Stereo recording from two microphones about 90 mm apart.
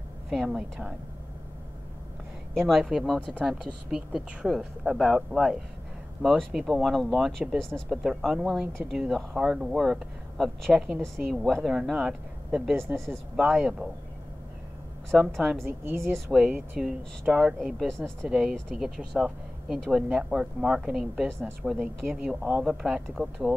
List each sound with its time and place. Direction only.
0.3 s speech: 5° right (ahead or behind)
2.6 s speech: centre (ahead or behind)
12.9 s speech: 5° left (ahead or behind)
13.4 s speech: 10° right (ahead or behind)
15.1 s speech: centre (ahead or behind)
15.6 s a woman's voice: 25° right (ahead or behind)
16.3 s speech: 10° right (ahead or behind)
17.7 s speech: 5° left (ahead or behind)
21.8 s speech: 10° right (ahead or behind)
22.6 s speech: centre (ahead or behind)